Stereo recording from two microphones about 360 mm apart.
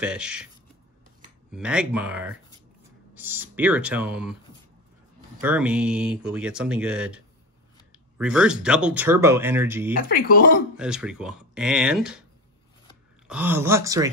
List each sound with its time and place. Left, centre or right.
0.0 s speech: centre
1.5 s speech: centre
5.4 s speech: centre
8.2 s speech: centre
10.3 s speech: left
10.8 s speech: centre
13.3 s speech: centre